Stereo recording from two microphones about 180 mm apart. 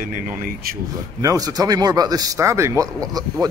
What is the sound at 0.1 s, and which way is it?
Speech, 50° right (ahead or behind).